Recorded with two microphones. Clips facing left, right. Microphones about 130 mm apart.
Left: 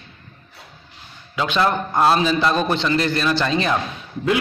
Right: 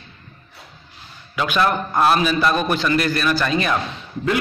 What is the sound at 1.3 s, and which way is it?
A man's voice, 25° left (ahead or behind).